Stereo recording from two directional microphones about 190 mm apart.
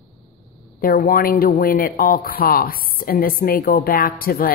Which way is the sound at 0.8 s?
50° left (ahead or behind).